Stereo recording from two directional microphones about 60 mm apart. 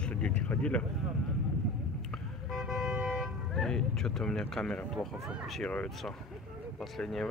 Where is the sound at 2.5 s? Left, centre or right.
Centre.